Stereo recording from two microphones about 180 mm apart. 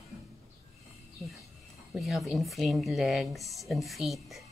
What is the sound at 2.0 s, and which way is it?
Speech, centre (ahead or behind).